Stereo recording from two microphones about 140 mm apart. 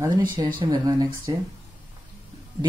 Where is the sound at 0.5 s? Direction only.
25° right (ahead or behind).